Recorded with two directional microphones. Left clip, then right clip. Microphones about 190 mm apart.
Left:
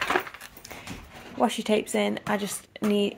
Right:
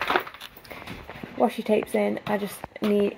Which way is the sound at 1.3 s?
20° left (ahead or behind).